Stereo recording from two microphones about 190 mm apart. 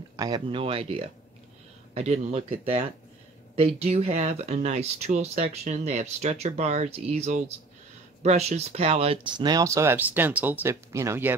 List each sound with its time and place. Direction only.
0.1 s speech: 20° right (ahead or behind)
3.5 s speech: 30° right (ahead or behind); by 11.3 s 15° right (ahead or behind)